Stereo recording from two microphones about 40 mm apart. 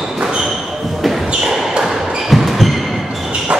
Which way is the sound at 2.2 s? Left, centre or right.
Centre.